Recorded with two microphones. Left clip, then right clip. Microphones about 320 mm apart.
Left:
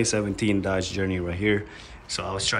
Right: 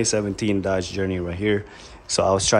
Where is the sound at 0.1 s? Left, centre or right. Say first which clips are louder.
Right 2 dB; centre.